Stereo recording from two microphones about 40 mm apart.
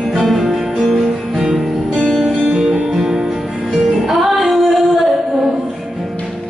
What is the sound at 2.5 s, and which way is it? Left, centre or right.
Music, centre.